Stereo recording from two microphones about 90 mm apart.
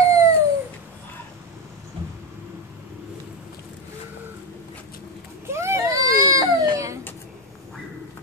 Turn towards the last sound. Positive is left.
turn(degrees=-35)  # may be behind; listen again after turning